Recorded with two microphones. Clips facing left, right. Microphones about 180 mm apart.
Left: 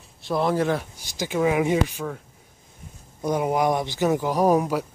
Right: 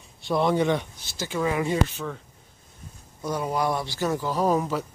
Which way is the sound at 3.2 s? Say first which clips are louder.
Left 4 dB; 20° left (ahead or behind).